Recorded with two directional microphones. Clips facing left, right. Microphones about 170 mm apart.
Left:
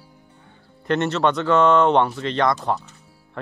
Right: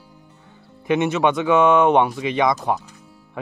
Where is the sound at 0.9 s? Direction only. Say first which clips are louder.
Right 2 dB; 10° right (ahead or behind).